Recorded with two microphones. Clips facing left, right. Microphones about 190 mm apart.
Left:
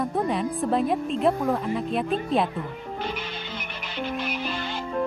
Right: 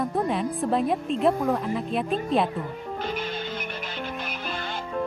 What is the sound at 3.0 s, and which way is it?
Music, 45° right (ahead or behind).